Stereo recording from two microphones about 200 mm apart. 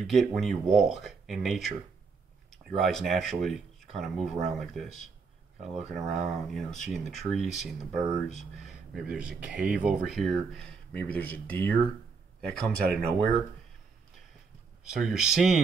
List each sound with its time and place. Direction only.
0.0 s speech: centre (ahead or behind)
5.9 s speech: centre (ahead or behind)
14.9 s speech: 5° right (ahead or behind)